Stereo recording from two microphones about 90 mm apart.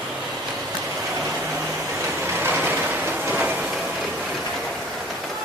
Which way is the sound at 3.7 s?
5° right (ahead or behind).